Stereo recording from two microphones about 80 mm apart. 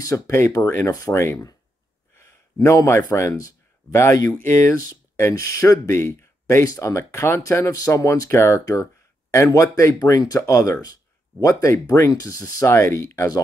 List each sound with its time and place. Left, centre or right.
0.3 s speech: left
6.6 s speech: left
12.6 s speech: left